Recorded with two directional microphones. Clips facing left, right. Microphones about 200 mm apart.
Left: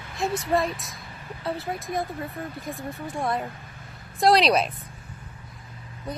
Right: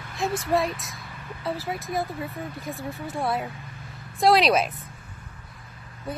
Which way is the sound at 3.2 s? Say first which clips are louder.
Even; 5° right (ahead or behind).